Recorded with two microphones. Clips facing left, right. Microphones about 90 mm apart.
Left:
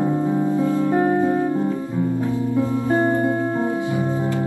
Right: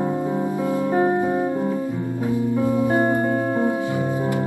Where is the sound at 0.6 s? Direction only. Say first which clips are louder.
Right 1 dB; 15° right (ahead or behind).